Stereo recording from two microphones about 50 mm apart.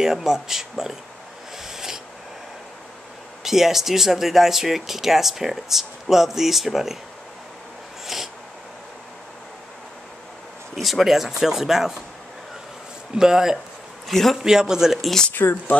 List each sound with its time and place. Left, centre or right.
0.0 s speech: centre
1.6 s a sound: centre
3.4 s speech: centre
8.1 s a sound: centre
10.8 s speech: centre
13.1 s speech: centre
14.0 s a man's voice: centre
14.4 s speech: centre
15.3 s speech: left